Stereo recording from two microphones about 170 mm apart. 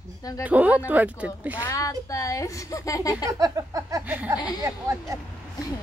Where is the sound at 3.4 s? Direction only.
20° right (ahead or behind).